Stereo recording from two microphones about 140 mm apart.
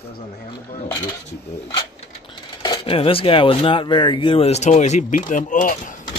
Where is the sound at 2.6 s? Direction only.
35° left (ahead or behind); by 5.9 s 70° left (ahead or behind).